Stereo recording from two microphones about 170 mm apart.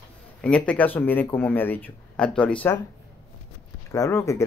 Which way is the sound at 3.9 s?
15° left (ahead or behind).